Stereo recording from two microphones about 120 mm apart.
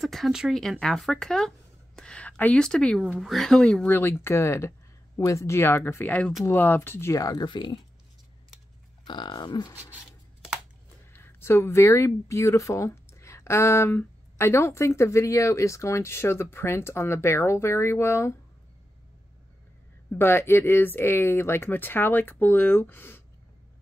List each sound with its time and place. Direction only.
0.0 s speech: centre (ahead or behind)
3.0 s speech: 5° right (ahead or behind)
3.8 s speech: 20° left (ahead or behind); by 7.8 s 40° left (ahead or behind)
9.0 s speech: 40° left (ahead or behind)
11.1 s speech: 20° left (ahead or behind)
20.1 s speech: 15° left (ahead or behind)